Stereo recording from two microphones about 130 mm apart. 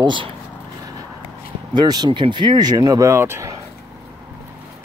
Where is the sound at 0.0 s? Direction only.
40° right (ahead or behind).